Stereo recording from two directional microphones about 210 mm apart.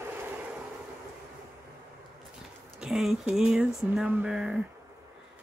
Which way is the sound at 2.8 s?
Centre (ahead or behind).